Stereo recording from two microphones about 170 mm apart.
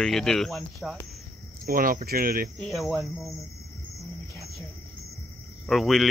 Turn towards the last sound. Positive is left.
turn(degrees=0)  # may be behind; listen again after turning